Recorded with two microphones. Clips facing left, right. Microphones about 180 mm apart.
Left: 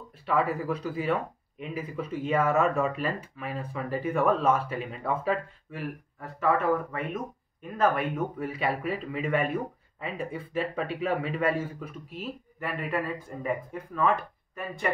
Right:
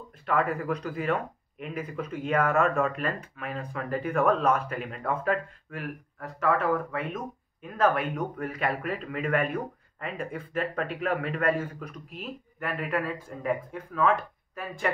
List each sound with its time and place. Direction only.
0.3 s a man's voice: 5° left (ahead or behind)